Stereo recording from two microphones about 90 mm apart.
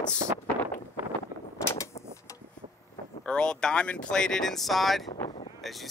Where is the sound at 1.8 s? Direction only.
40° left (ahead or behind).